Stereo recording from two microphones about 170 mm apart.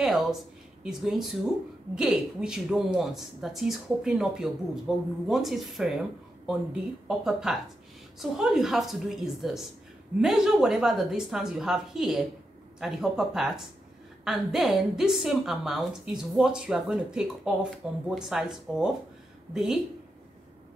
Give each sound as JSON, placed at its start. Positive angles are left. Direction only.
{"t": 0.0, "sound": "a woman's voice", "side_deg": 0}